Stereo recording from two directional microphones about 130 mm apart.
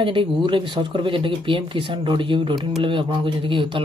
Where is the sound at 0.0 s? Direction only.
40° right (ahead or behind).